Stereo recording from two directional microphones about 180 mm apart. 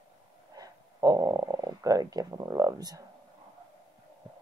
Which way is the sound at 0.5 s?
20° right (ahead or behind).